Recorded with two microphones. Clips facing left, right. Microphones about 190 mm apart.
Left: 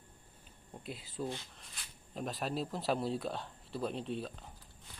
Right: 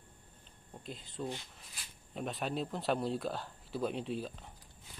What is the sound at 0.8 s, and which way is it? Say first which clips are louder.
A man's voice: left 1 dB; 5° left (ahead or behind).